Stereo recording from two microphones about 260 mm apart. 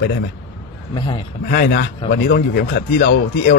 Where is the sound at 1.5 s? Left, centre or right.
Left.